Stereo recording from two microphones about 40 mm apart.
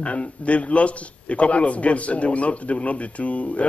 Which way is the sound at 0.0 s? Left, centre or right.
Left.